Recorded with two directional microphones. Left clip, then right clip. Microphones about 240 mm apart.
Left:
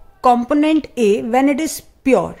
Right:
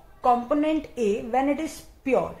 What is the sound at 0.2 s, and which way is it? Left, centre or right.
A woman's voice, left.